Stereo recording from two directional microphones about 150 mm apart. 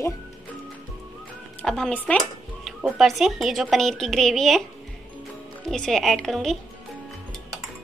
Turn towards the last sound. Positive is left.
turn(degrees=5)  # may be behind; listen again after turning